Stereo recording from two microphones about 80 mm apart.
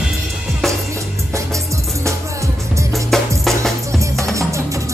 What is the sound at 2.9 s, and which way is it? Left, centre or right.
Music, centre.